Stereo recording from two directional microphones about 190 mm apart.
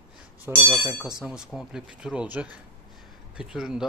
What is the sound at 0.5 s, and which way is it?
Speech, 10° right (ahead or behind).